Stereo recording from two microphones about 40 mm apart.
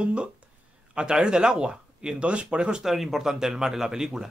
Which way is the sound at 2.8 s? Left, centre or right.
Centre.